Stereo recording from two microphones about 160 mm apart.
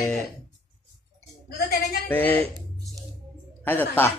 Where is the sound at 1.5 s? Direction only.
90° left.